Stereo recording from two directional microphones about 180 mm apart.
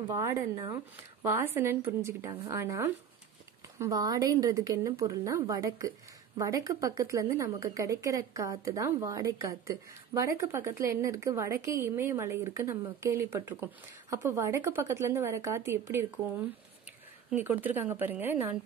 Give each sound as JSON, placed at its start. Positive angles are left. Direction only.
{"t": 0.1, "sound": "a woman's voice", "side_deg": -15}